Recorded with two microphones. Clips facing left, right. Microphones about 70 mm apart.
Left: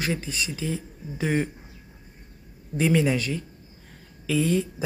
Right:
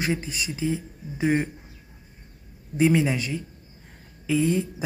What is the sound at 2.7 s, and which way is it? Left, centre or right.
Speech, centre.